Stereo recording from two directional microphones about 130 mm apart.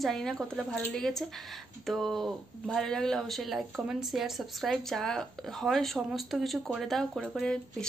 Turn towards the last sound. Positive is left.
turn(degrees=0)  # may be behind; listen again after turning